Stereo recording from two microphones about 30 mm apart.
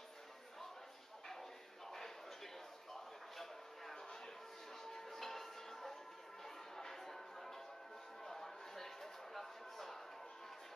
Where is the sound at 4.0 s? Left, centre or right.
Left.